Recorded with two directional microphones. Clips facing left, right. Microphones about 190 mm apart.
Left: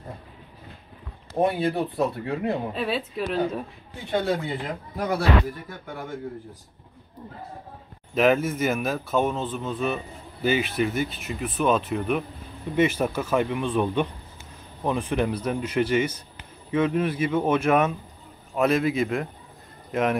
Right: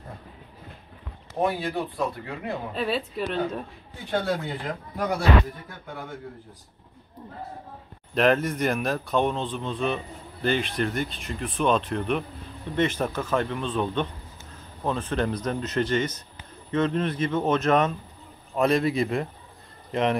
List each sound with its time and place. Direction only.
1.4 s speech: 25° left (ahead or behind)
2.7 s a man's voice: centre (ahead or behind)
8.1 s a man's voice: 5° left (ahead or behind)